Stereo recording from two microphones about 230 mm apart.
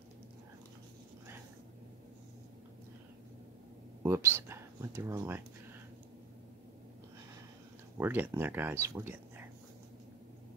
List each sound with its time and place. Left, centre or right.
4.0 s speech: centre
8.0 s speech: centre